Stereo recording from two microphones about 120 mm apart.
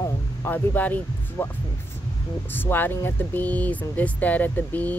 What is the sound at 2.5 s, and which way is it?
Speech, 15° left (ahead or behind).